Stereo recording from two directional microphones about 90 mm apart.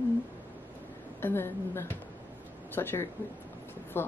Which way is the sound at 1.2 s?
25° left (ahead or behind).